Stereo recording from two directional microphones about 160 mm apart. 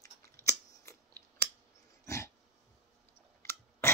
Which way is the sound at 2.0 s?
20° left (ahead or behind).